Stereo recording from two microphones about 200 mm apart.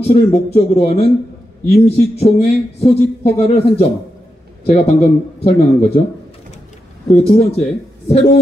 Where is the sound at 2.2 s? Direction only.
30° left (ahead or behind).